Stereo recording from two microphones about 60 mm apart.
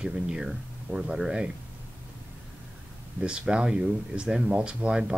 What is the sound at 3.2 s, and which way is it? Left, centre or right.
Speech, centre.